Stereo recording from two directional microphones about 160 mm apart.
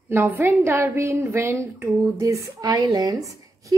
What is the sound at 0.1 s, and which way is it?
A woman's voice, 10° right (ahead or behind).